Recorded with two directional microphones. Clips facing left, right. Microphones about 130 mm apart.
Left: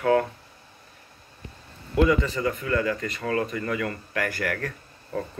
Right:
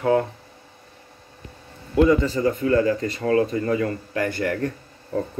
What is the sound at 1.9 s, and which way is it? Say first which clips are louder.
Speech: right 4 dB; 30° right (ahead or behind).